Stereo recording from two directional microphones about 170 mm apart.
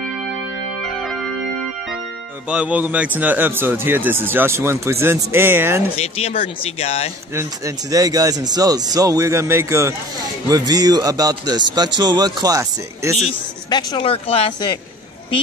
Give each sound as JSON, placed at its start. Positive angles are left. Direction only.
{"t": 2.4, "sound": "speech", "side_deg": -5}
{"t": 5.9, "sound": "speech", "side_deg": 35}
{"t": 7.3, "sound": "a man's voice", "side_deg": -20}
{"t": 13.7, "sound": "speech", "side_deg": 25}